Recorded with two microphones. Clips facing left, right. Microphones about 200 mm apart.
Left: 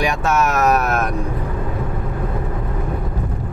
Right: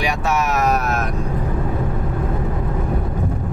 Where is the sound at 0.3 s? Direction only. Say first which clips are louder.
Left 2 dB; 50° left (ahead or behind).